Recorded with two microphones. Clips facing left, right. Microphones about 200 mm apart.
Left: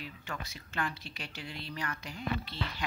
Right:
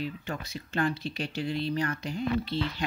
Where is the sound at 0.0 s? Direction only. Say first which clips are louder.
Right 8 dB; 30° right (ahead or behind).